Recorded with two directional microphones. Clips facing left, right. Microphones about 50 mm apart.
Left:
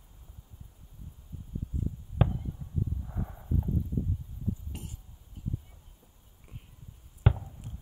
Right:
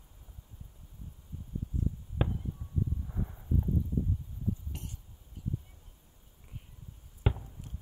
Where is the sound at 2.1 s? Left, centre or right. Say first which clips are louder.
Left 5 dB; centre.